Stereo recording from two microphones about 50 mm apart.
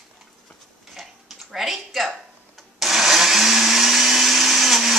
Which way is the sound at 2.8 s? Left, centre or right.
Centre.